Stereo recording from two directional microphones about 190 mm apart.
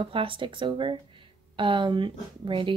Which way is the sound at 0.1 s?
25° right (ahead or behind).